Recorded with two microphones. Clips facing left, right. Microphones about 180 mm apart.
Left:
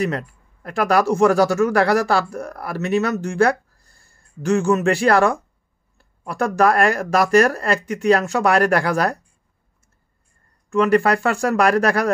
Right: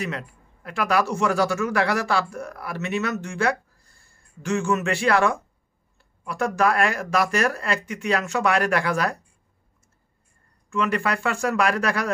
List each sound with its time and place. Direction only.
0.7 s speech: 40° left (ahead or behind)
10.7 s speech: 40° left (ahead or behind)